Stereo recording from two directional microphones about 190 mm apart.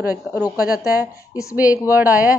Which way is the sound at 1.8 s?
10° right (ahead or behind).